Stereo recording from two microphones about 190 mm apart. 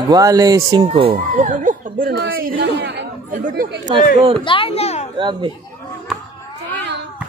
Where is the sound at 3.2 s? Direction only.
50° right (ahead or behind).